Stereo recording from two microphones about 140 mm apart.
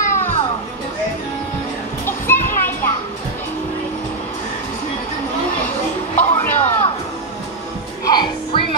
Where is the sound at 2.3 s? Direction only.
15° left (ahead or behind).